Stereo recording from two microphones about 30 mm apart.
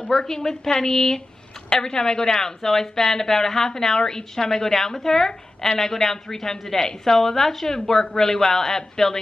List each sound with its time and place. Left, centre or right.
0.1 s a woman's voice: centre